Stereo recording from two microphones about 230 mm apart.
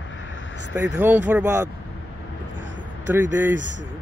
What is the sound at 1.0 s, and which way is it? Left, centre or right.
Speech, centre.